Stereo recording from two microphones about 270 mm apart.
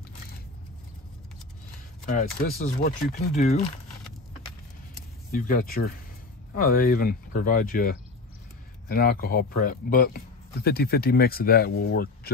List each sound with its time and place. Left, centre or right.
2.1 s speech: left
5.3 s a man's voice: left